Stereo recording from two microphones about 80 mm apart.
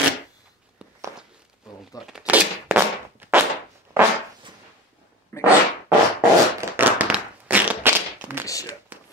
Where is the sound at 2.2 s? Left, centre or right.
Right.